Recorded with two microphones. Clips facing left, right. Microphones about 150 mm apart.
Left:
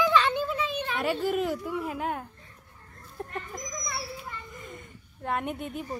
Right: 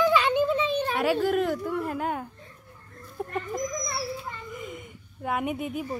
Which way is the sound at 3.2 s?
5° right (ahead or behind).